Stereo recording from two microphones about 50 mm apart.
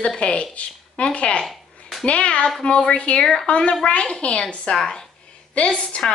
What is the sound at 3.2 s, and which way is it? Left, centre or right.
Speech, centre.